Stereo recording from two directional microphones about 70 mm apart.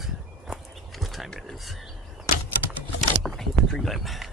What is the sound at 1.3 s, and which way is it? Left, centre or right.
Speech, centre.